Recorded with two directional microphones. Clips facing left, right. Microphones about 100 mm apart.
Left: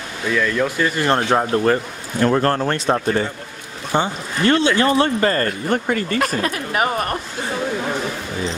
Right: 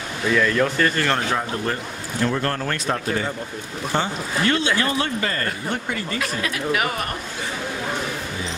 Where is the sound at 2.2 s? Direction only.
45° left (ahead or behind).